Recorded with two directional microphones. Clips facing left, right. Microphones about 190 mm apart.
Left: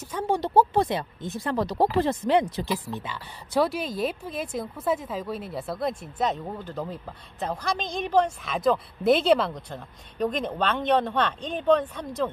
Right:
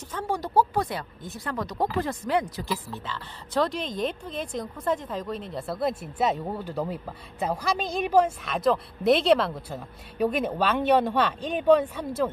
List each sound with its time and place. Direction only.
0.3 s a woman's voice: 25° left (ahead or behind); by 12.3 s 10° right (ahead or behind)